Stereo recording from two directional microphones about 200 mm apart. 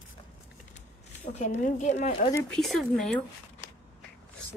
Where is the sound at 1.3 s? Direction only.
35° left (ahead or behind).